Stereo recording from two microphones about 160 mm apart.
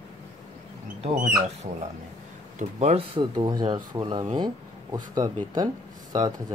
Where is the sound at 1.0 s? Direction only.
40° right (ahead or behind).